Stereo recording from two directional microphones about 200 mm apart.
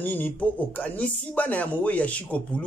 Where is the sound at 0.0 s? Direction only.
10° left (ahead or behind).